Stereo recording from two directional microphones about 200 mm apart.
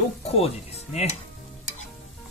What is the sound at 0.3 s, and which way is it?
Speech, 30° left (ahead or behind).